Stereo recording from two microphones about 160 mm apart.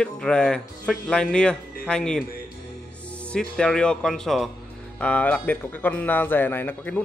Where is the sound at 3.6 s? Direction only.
5° left (ahead or behind).